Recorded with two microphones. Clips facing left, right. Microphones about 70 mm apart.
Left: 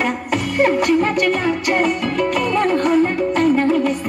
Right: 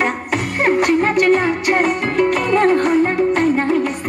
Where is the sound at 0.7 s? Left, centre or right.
Right.